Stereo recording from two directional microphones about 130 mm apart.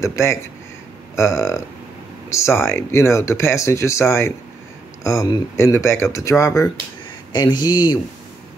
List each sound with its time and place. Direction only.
0.0 s speech: 20° left (ahead or behind)